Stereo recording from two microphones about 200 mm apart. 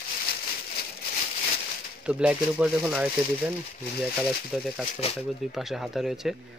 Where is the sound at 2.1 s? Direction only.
5° right (ahead or behind).